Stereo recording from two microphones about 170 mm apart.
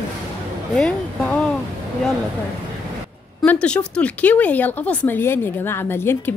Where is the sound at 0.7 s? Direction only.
5° left (ahead or behind).